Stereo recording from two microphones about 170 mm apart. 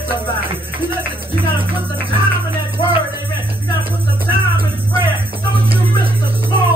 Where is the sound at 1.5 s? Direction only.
10° right (ahead or behind).